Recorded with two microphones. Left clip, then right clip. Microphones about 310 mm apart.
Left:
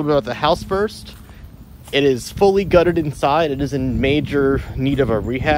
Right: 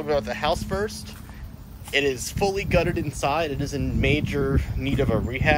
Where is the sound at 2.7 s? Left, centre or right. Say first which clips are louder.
Left 9 dB; left.